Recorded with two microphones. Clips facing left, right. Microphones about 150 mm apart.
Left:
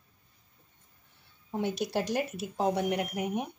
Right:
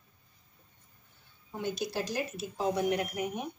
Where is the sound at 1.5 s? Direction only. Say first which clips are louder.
Left 4 dB; 70° left (ahead or behind).